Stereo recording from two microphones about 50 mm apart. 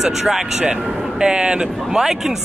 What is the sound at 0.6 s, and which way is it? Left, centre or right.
Speech, right.